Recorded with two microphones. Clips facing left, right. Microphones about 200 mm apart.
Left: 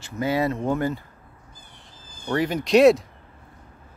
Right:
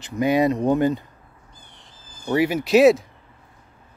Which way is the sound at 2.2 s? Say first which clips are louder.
Right 3 dB; 10° right (ahead or behind).